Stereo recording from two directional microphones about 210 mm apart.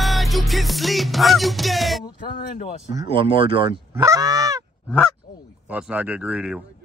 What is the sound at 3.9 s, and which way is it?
Honk, 15° right (ahead or behind).